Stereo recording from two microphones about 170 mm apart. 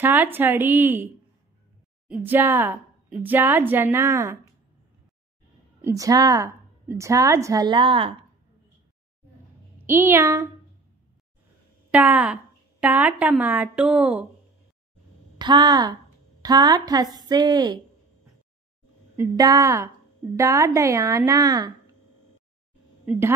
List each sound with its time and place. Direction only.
0.0 s speech: 10° right (ahead or behind)
2.0 s speech: 10° right (ahead or behind)
5.8 s a woman's voice: 15° right (ahead or behind)
9.8 s speech: 15° right (ahead or behind)
11.9 s speech: 10° right (ahead or behind)
15.3 s a woman's voice: 25° right (ahead or behind)
19.1 s a woman's voice: 20° right (ahead or behind)
23.0 s speech: 15° right (ahead or behind)